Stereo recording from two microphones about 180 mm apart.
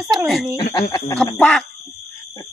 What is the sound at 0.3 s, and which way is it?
Speech, centre (ahead or behind).